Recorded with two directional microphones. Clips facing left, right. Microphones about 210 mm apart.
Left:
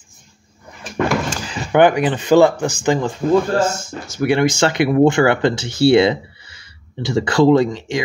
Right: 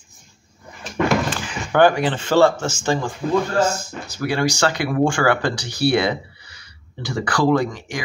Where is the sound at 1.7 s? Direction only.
15° left (ahead or behind).